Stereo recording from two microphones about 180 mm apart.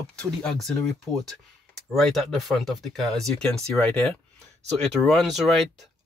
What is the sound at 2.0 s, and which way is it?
Speech, centre (ahead or behind).